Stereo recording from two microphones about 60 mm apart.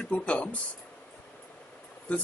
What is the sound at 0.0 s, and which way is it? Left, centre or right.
Speech, left.